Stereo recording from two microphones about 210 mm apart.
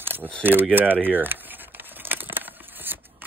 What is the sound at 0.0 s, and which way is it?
Camera, 10° right (ahead or behind).